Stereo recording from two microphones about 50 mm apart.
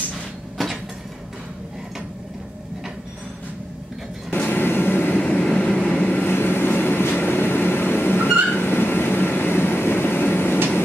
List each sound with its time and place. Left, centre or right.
0.6 s a sound: centre
4.5 s vehicle: left
6.0 s vehicle: left
6.3 s vehicle: left